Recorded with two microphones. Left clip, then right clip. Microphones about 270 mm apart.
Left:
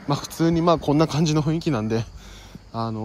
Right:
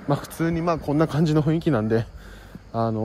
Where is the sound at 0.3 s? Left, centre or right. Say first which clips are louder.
Left 9 dB; left.